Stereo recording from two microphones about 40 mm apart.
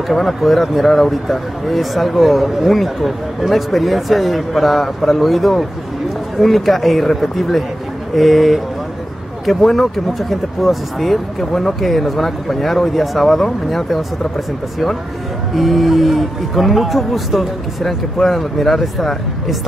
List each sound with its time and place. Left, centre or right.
0.1 s speech: centre
15.5 s speech: centre